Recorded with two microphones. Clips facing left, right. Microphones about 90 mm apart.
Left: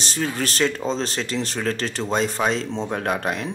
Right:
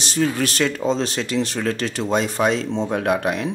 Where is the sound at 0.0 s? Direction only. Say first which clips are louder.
Right 4 dB; 35° left (ahead or behind).